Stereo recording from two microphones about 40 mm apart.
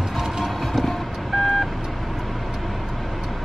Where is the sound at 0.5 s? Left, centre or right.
Centre.